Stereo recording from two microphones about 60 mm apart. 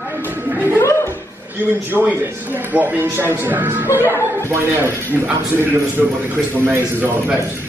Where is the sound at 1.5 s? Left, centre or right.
Right.